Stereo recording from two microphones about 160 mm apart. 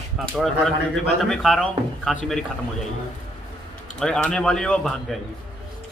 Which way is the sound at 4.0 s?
5° left (ahead or behind).